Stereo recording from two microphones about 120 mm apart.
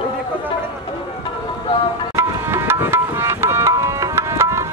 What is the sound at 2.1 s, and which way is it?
Music, 20° right (ahead or behind).